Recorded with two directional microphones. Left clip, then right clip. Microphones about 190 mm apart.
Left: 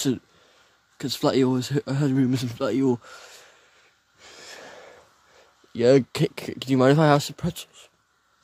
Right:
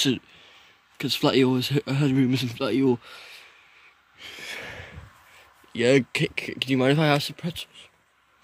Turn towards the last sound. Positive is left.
turn(degrees=25)  # may be behind; listen again after turning